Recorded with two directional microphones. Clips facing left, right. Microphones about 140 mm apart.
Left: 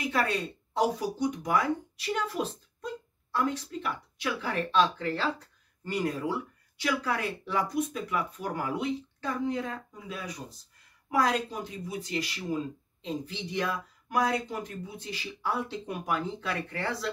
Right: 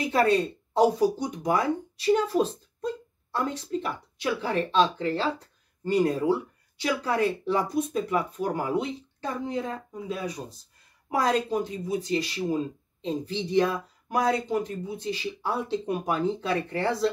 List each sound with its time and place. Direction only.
0.1 s speech: 30° right (ahead or behind)